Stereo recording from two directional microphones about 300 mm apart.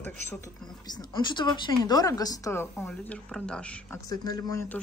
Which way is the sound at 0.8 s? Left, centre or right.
Centre.